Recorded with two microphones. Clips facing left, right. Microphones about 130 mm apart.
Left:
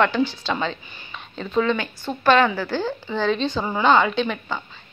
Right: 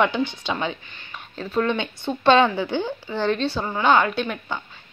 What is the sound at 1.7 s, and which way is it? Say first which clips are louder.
Speech: right 1 dB; 25° right (ahead or behind).